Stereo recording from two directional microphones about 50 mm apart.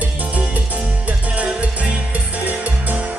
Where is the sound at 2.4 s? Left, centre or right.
Right.